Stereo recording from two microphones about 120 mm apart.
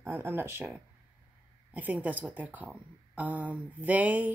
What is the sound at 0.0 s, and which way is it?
Speech, 20° right (ahead or behind).